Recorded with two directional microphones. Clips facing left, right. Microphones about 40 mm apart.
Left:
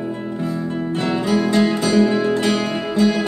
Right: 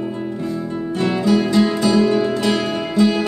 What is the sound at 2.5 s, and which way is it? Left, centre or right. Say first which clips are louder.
Music: right 1 dB; centre.